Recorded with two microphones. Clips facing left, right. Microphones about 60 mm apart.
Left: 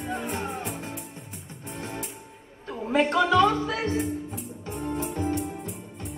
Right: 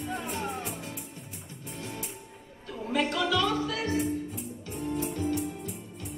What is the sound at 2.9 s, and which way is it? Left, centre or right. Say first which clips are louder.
Music: left 6 dB; left.